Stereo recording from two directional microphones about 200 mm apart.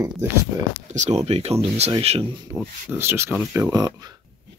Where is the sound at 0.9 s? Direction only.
35° right (ahead or behind).